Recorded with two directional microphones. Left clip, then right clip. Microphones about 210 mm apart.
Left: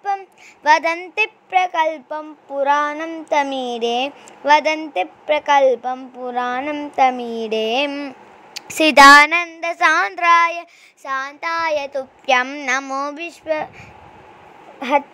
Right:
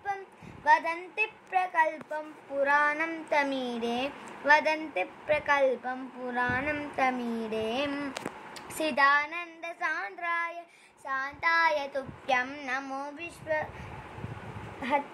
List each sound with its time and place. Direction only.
0.7 s a woman's voice: 40° left (ahead or behind)
7.0 s a woman's voice: 40° left (ahead or behind)
14.8 s speech: 50° left (ahead or behind)